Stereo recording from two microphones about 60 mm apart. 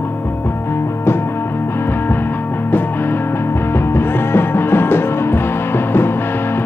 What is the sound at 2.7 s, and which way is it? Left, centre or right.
Music, left.